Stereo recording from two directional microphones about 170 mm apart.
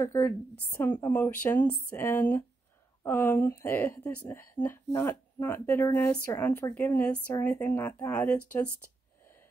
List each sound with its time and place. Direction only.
0.0 s speech: 15° left (ahead or behind)